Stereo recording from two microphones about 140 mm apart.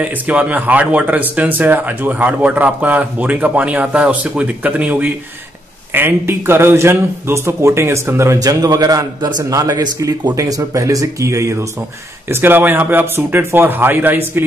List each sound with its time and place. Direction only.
0.0 s speech: 10° right (ahead or behind)